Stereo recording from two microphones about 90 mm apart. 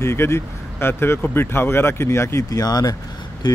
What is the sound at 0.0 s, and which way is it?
Speech, 30° left (ahead or behind).